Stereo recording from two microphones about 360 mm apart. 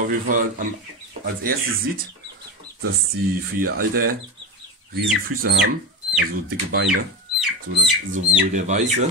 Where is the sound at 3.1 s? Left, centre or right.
Right.